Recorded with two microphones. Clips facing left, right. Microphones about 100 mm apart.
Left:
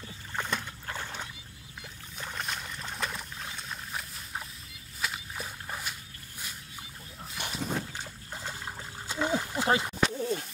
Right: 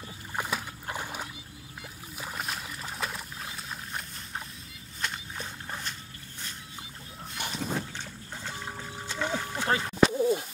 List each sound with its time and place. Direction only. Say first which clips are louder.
0.4 s boat: right 1 dB; 5° right (ahead or behind)
0.8 s rowboat: right 2 dB; 15° right (ahead or behind)
2.1 s boat: right 1 dB; 5° right (ahead or behind)
5.0 s a sound: even; 5° left (ahead or behind)
7.5 s a sound: even; 5° left (ahead or behind)
10.0 s bird: right 9 dB; 15° right (ahead or behind)